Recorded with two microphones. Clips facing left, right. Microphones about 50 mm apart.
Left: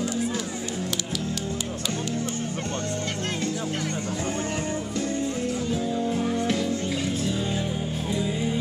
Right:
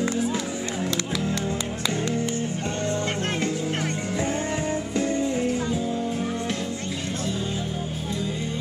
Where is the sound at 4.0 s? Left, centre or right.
Right.